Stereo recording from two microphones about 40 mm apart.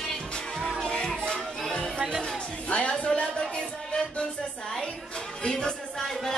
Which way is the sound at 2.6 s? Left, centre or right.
Left.